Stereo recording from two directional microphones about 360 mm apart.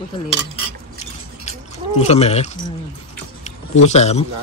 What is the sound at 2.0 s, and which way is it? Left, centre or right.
Speech, centre.